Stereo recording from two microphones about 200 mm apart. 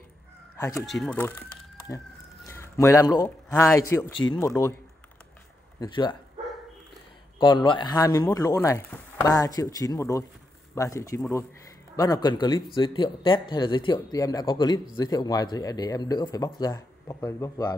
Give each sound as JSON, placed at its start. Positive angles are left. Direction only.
{"t": 0.7, "sound": "speech", "side_deg": 0}
{"t": 1.9, "sound": "a man's voice", "side_deg": 15}
{"t": 5.8, "sound": "speech", "side_deg": 20}
{"t": 7.3, "sound": "speech", "side_deg": 25}